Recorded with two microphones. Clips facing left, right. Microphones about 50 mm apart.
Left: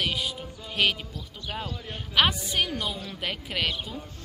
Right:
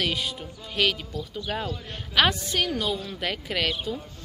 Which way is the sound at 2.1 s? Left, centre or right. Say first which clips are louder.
Right 1 dB; centre.